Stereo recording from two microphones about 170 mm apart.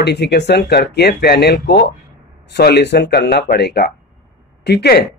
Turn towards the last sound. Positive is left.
turn(degrees=75)  # may be behind; listen again after turning